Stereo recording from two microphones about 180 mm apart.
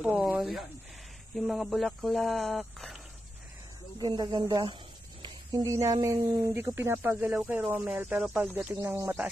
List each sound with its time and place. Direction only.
0.0 s speech: 10° right (ahead or behind)
4.0 s speech: 25° right (ahead or behind)